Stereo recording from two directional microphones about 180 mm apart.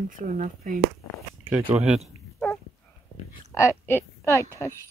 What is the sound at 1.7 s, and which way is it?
Speech, centre (ahead or behind).